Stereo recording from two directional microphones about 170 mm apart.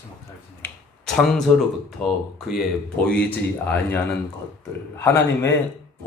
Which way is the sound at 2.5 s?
Centre (ahead or behind).